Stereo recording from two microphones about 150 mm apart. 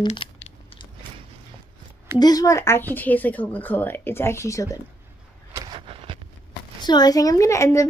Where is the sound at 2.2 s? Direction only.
25° left (ahead or behind).